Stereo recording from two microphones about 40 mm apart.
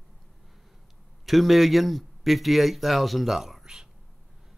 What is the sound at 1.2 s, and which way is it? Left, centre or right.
Speech, centre.